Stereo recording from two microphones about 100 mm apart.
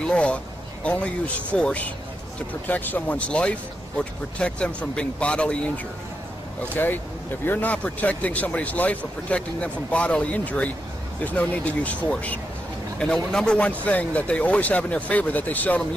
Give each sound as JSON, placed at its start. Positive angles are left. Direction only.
{"t": 0.0, "sound": "a man's voice", "side_deg": 10}
{"t": 6.7, "sound": "speech", "side_deg": 20}